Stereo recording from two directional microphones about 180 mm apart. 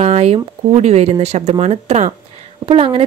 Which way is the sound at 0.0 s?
35° right (ahead or behind).